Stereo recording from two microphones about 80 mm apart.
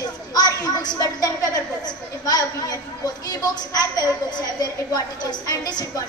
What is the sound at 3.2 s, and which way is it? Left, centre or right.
A woman's voice, left.